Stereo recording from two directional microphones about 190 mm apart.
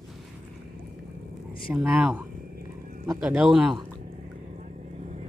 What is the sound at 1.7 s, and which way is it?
A man's voice, 10° right (ahead or behind).